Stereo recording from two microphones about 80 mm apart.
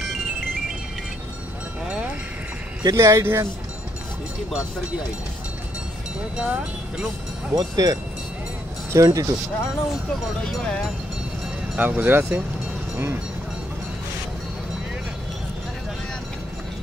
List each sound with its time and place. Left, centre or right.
2.8 s speech: right
6.3 s speech: centre
7.5 s speech: right
10.4 s speech: centre
11.7 s speech: centre